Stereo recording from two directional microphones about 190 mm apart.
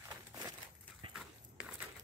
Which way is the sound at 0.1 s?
20° right (ahead or behind).